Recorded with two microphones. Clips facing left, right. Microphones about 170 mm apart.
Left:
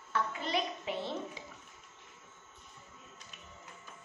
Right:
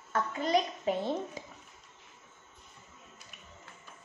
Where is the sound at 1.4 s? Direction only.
45° right (ahead or behind).